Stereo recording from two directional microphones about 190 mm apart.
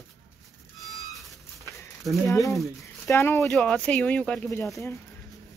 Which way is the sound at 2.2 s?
15° left (ahead or behind).